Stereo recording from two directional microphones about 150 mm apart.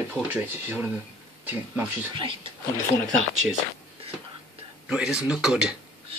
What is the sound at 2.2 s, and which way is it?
Speech, 35° right (ahead or behind).